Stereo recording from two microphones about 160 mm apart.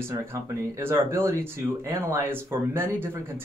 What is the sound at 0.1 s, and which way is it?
Speech, 15° right (ahead or behind).